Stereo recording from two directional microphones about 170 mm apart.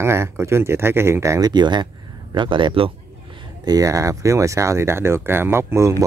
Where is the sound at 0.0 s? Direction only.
15° right (ahead or behind).